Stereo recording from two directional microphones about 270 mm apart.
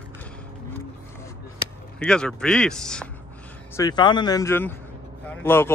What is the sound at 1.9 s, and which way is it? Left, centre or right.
Speech, centre.